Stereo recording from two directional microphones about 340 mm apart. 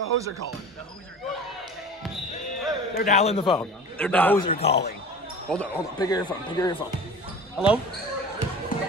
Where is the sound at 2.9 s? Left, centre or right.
Centre.